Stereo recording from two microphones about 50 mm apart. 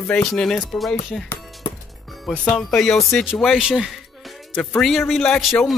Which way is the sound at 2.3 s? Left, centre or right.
Centre.